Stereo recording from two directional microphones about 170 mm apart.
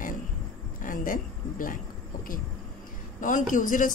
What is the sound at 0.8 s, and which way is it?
Speech, 50° left (ahead or behind).